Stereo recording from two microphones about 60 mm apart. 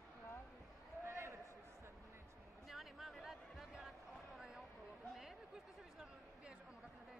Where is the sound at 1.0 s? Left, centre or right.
Right.